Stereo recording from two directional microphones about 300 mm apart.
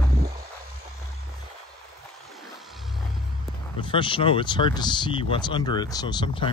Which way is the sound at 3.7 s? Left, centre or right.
Centre.